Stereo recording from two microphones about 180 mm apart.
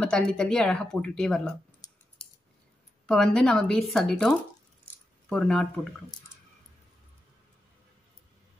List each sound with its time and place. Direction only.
0.0 s speech: 5° left (ahead or behind)
3.1 s speech: 5° left (ahead or behind)